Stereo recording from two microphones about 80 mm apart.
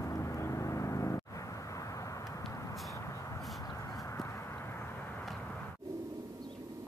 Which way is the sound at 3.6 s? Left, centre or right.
Left.